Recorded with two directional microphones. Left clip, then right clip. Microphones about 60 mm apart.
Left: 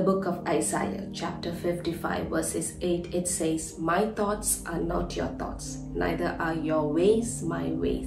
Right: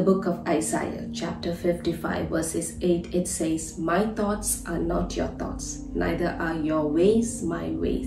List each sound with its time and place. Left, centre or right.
0.0 s a woman's voice: left